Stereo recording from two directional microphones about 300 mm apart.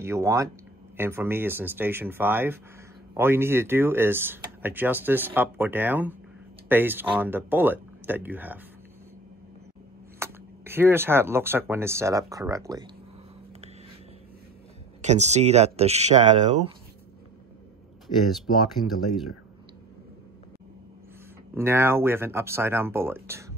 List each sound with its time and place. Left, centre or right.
0.0 s speech: centre
10.1 s speech: centre
15.0 s speech: right
18.1 s speech: left
21.5 s speech: centre